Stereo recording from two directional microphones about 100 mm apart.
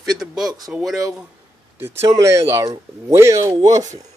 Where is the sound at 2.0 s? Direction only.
30° right (ahead or behind).